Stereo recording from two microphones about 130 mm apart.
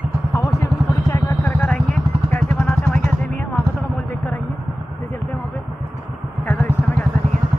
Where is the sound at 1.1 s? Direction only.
15° left (ahead or behind).